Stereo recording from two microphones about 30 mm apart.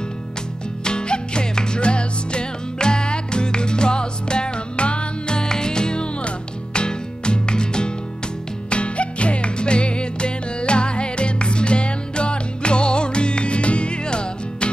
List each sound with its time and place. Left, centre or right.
0.8 s music: left
8.6 s music: left